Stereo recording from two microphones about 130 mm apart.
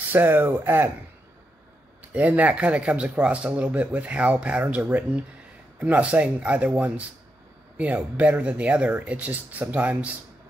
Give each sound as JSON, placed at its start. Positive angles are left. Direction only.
{"t": 0.1, "sound": "speech", "side_deg": -15}
{"t": 2.1, "sound": "speech", "side_deg": -10}